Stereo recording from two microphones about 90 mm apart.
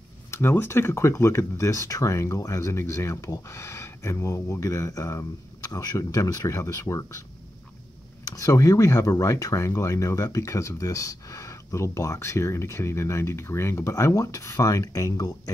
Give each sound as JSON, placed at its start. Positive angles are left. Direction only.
{"t": 0.3, "sound": "speech", "side_deg": 25}
{"t": 8.3, "sound": "speech", "side_deg": 40}